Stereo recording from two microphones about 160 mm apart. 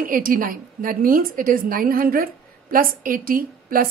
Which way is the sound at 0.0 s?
60° right (ahead or behind).